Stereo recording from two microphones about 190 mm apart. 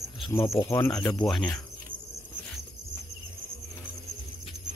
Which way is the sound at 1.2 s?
Centre (ahead or behind).